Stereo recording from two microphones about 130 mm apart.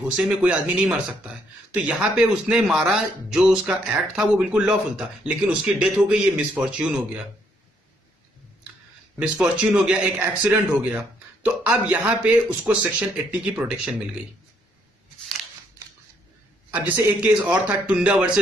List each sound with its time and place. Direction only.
0.1 s speech: 10° right (ahead or behind)
9.4 s speech: 10° right (ahead or behind)
16.7 s speech: 15° right (ahead or behind)